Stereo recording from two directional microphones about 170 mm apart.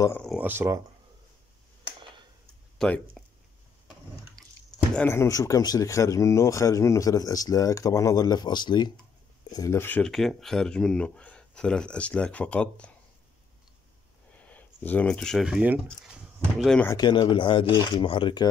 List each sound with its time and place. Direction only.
0.4 s speech: 10° right (ahead or behind)
2.8 s speech: 5° left (ahead or behind)
4.9 s speech: 15° left (ahead or behind)
14.3 s speech: 10° left (ahead or behind)
16.8 s speech: 20° left (ahead or behind)